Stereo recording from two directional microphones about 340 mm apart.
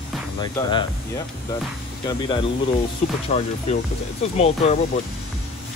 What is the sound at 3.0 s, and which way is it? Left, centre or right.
Speech, centre.